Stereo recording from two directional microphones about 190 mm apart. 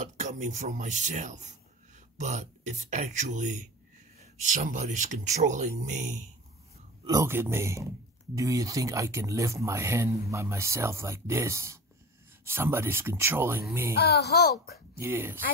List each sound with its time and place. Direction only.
0.0 s speech: 40° right (ahead or behind)
7.1 s speech: 15° right (ahead or behind)
13.9 s speech: 60° left (ahead or behind)
15.0 s speech: 10° right (ahead or behind)